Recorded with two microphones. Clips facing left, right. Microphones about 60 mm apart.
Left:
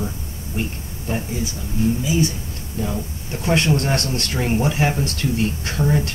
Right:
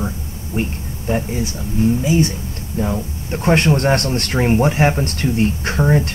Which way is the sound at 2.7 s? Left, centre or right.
Right.